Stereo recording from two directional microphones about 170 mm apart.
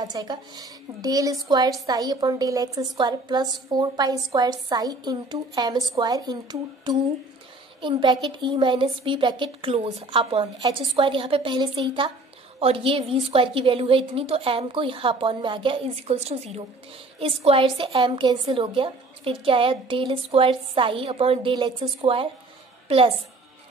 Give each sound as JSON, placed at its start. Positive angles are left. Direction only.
{"t": 0.0, "sound": "a woman's voice", "side_deg": -25}